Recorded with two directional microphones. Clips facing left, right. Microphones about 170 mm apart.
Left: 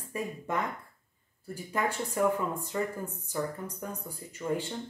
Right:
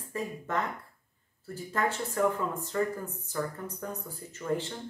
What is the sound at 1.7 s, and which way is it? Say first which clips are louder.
Speech: even; 15° left (ahead or behind).